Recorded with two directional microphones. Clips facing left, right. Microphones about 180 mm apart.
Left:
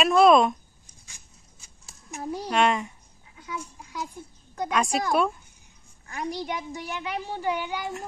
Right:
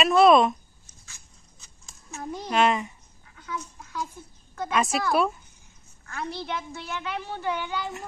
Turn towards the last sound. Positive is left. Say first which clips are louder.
# left 1 dB
turn(degrees=15)  # may be behind; listen again after turning